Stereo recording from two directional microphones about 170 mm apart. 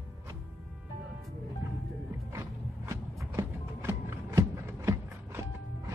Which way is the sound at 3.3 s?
15° right (ahead or behind).